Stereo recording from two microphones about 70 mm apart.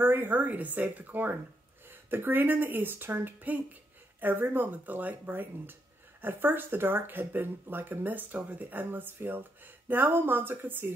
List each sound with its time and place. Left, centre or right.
0.0 s speech: right